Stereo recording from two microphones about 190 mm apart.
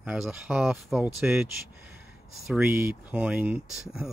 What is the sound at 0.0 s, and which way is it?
Speech, 5° right (ahead or behind).